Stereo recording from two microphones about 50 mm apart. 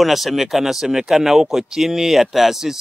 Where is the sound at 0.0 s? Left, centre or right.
Centre.